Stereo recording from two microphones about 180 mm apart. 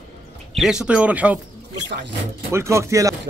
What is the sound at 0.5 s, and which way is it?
Speech, centre (ahead or behind).